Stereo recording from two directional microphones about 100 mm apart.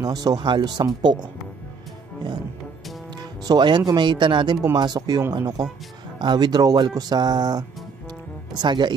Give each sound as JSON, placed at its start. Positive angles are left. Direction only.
{"t": 0.0, "sound": "speech", "side_deg": -40}
{"t": 3.2, "sound": "speech", "side_deg": -45}